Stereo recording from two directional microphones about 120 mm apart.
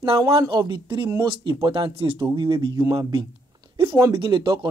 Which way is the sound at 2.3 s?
35° right (ahead or behind).